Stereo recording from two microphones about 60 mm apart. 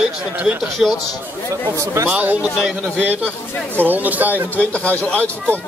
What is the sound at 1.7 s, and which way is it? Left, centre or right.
Speech, right.